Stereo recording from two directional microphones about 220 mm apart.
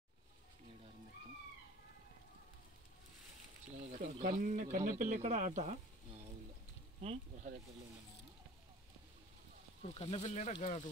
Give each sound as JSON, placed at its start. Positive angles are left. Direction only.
{"t": 4.0, "sound": "speech", "side_deg": -35}
{"t": 7.0, "sound": "speech", "side_deg": -30}
{"t": 9.8, "sound": "speech", "side_deg": 25}